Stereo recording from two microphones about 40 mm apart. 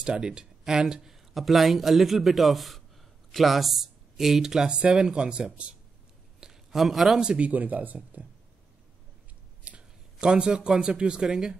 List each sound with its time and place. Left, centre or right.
0.0 s speech: centre
4.6 s a man's voice: right
6.4 s a sound: centre
7.5 s speech: right
9.7 s a sound: right
10.2 s a man's voice: right